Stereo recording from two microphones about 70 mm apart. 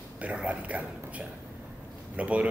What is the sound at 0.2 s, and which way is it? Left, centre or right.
A man's voice, centre.